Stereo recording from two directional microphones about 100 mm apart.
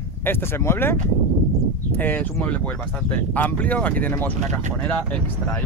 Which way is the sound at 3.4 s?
15° left (ahead or behind).